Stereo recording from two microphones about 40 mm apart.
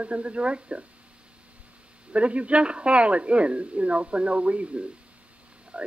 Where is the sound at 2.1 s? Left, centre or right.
Right.